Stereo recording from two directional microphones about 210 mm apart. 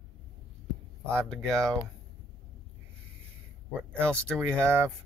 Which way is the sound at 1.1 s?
5° left (ahead or behind).